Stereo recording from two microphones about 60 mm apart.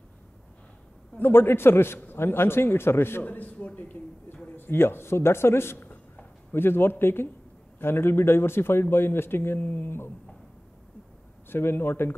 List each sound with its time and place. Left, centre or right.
1.2 s a man's voice: left
4.6 s speech: left
5.8 s a sound: left
7.8 s a man's voice: left
11.4 s a man's voice: left